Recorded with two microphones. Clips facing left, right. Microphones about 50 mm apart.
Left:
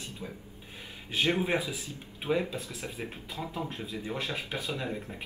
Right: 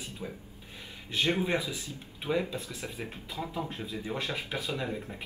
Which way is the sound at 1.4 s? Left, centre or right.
Centre.